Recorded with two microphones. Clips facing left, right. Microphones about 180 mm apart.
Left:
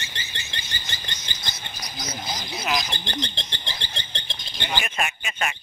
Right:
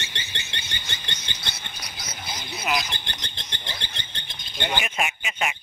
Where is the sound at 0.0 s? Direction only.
70° right (ahead or behind).